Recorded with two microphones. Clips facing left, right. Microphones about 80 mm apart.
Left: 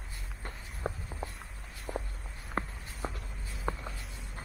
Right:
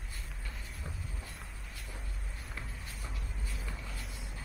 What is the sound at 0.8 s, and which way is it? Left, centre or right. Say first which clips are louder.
Walk: left 12 dB; left.